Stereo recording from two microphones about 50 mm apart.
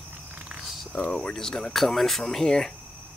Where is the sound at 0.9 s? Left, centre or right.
Centre.